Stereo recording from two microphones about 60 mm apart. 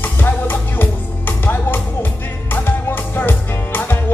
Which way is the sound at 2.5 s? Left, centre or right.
Left.